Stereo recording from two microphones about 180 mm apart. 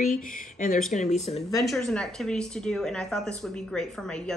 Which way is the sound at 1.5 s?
Centre (ahead or behind).